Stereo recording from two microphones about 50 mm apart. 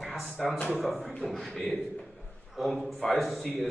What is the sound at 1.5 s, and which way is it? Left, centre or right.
Speech, centre.